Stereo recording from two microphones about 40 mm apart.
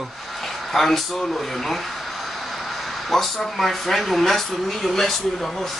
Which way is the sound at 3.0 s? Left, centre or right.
Centre.